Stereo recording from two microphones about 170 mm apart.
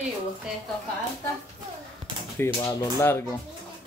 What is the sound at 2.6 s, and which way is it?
Speech, 20° left (ahead or behind).